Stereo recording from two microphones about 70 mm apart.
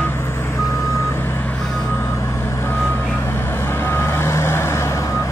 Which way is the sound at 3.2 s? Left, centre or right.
Left.